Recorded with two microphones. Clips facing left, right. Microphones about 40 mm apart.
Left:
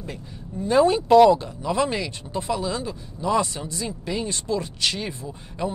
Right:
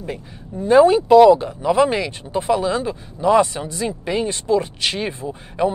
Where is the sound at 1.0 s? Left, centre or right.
Centre.